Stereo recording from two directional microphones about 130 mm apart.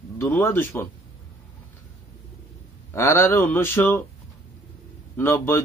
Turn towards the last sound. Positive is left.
turn(degrees=20)  # may be behind; listen again after turning